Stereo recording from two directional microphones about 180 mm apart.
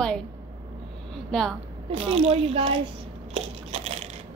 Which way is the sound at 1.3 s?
Centre (ahead or behind).